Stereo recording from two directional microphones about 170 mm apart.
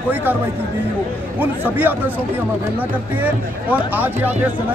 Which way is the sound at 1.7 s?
10° right (ahead or behind).